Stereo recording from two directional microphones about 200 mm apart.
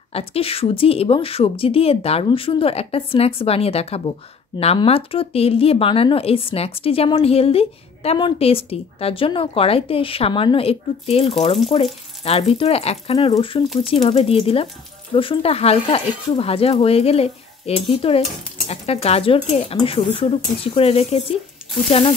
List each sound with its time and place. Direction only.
0.1 s speech: 30° left (ahead or behind)